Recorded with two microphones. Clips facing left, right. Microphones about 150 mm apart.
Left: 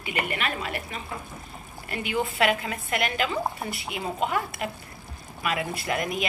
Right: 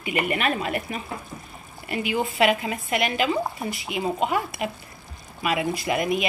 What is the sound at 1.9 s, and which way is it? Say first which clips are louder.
A woman's voice: right 3 dB; 10° right (ahead or behind).